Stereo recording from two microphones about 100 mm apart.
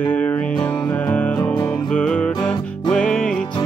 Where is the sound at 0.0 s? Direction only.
15° left (ahead or behind).